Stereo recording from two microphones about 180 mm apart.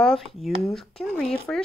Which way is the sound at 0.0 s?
Centre (ahead or behind).